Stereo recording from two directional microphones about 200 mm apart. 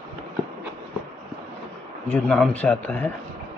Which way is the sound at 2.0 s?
5° left (ahead or behind).